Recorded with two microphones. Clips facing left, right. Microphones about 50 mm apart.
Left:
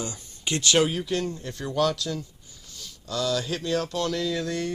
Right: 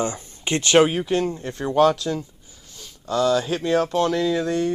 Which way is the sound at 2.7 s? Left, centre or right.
Right.